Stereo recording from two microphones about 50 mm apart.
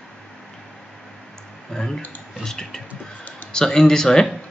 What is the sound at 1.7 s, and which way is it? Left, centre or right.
Speech, centre.